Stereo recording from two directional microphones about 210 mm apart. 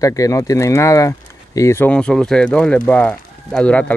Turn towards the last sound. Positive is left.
turn(degrees=5)  # may be behind; listen again after turning